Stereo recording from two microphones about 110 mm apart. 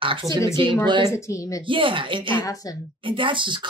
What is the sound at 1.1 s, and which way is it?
Speech, 30° left (ahead or behind).